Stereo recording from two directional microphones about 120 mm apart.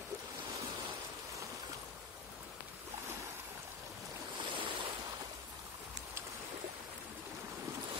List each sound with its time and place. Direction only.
4.4 s waves: 45° right (ahead or behind)